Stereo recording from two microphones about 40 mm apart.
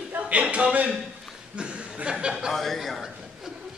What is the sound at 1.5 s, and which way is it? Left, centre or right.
Chuckle, right.